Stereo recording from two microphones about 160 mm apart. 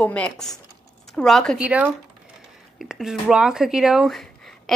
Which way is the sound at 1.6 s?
10° right (ahead or behind).